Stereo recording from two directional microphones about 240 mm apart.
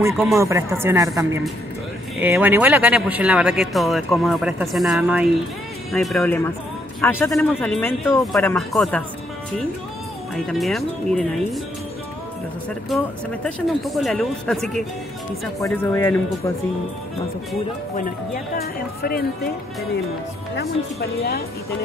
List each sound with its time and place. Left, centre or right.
0.4 s speech: centre
10.3 s speech: centre
12.9 s speech: centre
17.9 s speech: left
20.5 s speech: left